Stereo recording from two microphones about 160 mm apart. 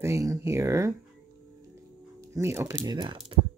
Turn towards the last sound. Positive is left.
turn(degrees=-30)  # may be behind; listen again after turning